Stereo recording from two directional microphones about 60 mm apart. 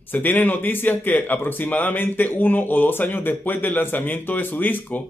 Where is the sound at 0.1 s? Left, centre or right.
Left.